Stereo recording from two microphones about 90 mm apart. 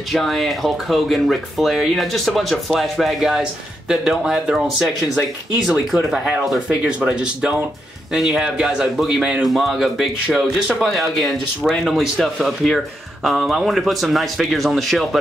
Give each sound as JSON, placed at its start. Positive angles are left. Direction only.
{"t": 0.1, "sound": "speech", "side_deg": 0}